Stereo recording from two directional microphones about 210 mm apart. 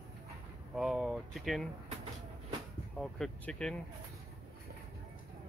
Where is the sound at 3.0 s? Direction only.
5° left (ahead or behind).